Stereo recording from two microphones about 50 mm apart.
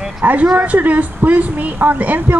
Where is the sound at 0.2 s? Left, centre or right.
Right.